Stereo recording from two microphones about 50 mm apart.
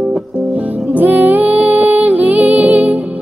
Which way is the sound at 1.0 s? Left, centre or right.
Right.